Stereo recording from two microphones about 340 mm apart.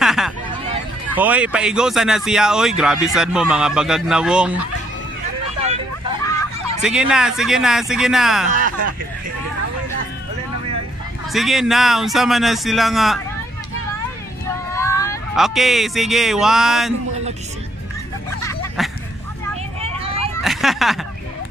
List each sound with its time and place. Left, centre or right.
0.0 s hubbub: centre
1.1 s speech: centre
5.6 s vehicle: centre
6.8 s speech: centre
8.5 s speech: right
11.3 s speech: centre
14.8 s speech: centre
18.4 s a sound: centre
20.4 s a sound: centre